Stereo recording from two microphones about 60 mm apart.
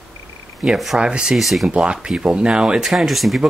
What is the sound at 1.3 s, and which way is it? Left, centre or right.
Speech, centre.